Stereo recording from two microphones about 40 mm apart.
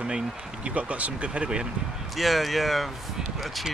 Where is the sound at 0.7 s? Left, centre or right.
Right.